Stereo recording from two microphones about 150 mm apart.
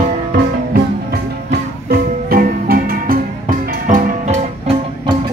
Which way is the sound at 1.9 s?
80° right.